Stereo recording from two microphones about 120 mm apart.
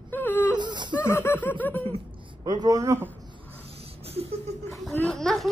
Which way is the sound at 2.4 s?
30° right (ahead or behind).